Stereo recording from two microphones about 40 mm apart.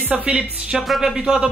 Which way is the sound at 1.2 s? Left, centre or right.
Right.